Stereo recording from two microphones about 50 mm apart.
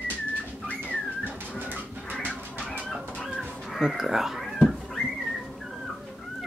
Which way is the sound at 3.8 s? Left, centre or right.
Centre.